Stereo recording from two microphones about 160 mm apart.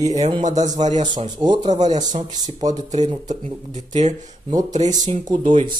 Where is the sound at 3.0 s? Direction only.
25° right (ahead or behind).